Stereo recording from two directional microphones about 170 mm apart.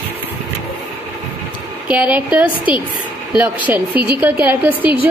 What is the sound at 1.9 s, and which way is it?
A woman's voice, 10° right (ahead or behind).